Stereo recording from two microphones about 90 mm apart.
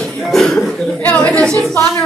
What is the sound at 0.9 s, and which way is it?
Speech, 20° left (ahead or behind).